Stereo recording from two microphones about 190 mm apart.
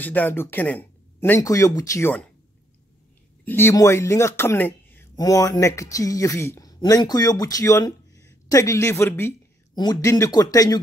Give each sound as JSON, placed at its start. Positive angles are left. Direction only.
{"t": 0.0, "sound": "speech", "side_deg": 10}
{"t": 3.4, "sound": "speech", "side_deg": 10}